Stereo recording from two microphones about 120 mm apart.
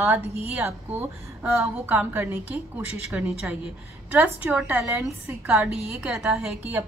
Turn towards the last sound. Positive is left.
turn(degrees=-5)  # may be behind; listen again after turning